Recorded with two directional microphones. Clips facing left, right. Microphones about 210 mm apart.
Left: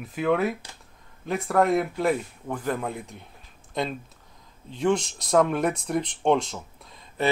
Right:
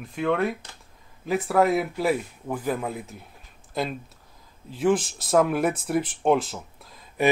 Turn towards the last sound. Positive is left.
turn(degrees=0)  # may be behind; listen again after turning